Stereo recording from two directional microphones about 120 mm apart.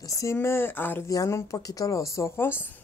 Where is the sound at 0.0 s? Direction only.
25° left (ahead or behind).